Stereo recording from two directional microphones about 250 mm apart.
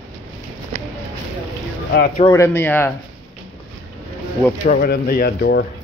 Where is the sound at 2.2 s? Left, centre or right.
Centre.